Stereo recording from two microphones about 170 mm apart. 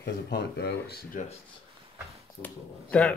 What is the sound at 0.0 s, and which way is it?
Speech, 80° left.